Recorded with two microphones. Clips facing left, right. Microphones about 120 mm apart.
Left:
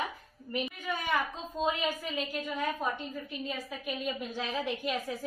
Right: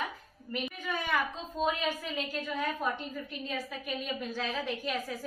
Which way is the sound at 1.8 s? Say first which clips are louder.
Left 1 dB; 15° left (ahead or behind).